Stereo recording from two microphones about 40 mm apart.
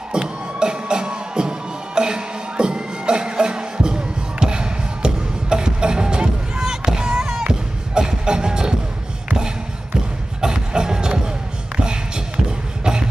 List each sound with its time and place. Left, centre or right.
0.1 s music: right
10.4 s music: right
11.7 s a sound: right
12.4 s beatboxing: right